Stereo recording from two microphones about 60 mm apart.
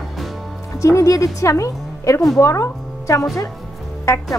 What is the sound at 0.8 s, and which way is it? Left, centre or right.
Speech, left.